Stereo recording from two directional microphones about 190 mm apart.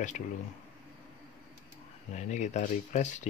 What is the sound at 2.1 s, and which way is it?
Speech, 40° left (ahead or behind).